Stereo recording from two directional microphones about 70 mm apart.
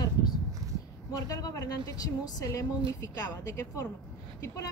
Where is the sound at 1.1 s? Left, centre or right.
Left.